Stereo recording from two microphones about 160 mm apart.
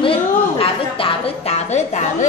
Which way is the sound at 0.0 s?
35° left (ahead or behind).